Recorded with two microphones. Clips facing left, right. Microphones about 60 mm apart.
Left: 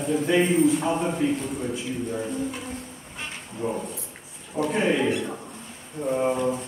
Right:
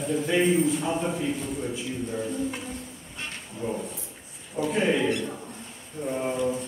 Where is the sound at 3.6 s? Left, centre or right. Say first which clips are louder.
Left 2 dB; left.